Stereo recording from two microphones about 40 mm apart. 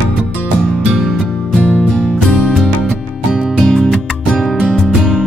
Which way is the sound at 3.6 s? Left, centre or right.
Centre.